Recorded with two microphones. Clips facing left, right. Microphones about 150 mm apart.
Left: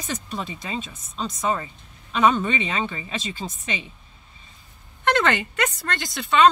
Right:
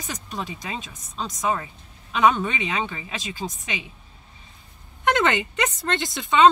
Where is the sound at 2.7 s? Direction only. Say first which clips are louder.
Left 1 dB; 15° right (ahead or behind).